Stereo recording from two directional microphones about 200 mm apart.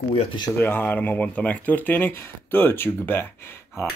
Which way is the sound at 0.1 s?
30° left (ahead or behind).